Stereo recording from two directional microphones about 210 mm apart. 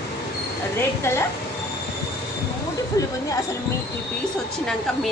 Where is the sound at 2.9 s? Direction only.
15° left (ahead or behind).